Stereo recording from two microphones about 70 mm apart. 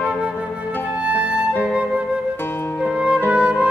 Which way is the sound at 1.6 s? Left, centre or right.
Centre.